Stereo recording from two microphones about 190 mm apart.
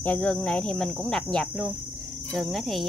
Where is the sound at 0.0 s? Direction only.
5° left (ahead or behind).